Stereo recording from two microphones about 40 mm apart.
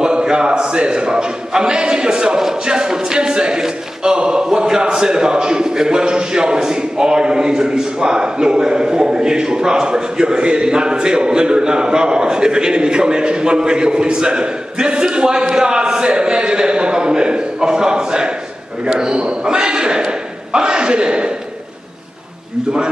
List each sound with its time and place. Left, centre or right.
0.0 s a man's voice: right